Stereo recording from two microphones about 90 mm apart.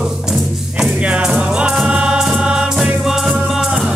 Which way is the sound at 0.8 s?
10° right (ahead or behind).